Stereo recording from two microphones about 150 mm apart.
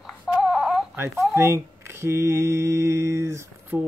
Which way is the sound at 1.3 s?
15° right (ahead or behind).